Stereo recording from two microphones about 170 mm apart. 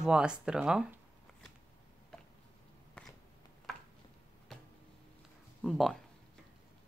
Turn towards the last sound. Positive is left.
turn(degrees=0)  # may be behind; listen again after turning